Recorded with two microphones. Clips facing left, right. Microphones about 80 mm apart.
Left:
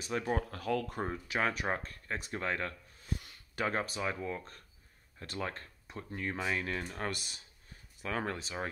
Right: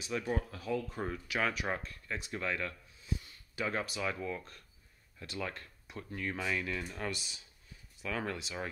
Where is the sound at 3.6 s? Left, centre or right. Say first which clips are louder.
Left 1 dB; left.